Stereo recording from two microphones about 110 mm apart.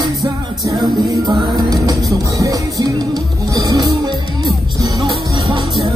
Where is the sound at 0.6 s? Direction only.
35° right (ahead or behind).